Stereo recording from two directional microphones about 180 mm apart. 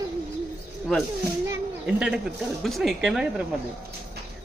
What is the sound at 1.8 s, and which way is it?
Speech, 5° right (ahead or behind).